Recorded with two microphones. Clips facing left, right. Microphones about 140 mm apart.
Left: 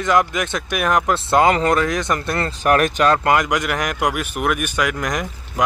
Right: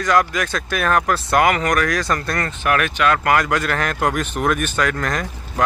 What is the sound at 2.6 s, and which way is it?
Speech, 40° left (ahead or behind).